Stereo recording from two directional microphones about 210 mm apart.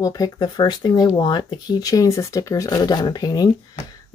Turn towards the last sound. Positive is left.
turn(degrees=20)  # may be behind; listen again after turning